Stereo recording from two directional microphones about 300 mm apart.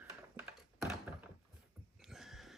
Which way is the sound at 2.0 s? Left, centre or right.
Centre.